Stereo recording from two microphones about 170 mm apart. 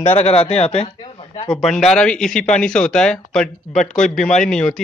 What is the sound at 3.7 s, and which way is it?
Speech, 45° left (ahead or behind).